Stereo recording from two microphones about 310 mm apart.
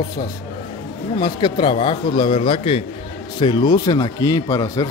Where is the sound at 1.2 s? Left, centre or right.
Centre.